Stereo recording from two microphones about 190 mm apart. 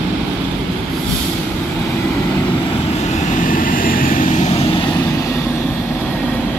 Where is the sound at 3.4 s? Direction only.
45° left (ahead or behind).